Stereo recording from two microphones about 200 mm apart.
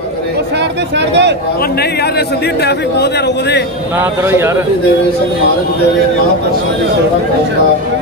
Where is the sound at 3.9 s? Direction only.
10° right (ahead or behind).